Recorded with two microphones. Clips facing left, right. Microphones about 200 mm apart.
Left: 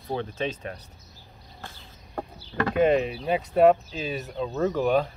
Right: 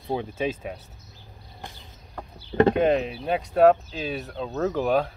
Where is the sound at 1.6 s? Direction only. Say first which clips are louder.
Right 2 dB; 15° right (ahead or behind).